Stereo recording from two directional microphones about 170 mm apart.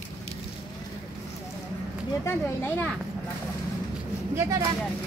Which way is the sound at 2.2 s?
15° left (ahead or behind).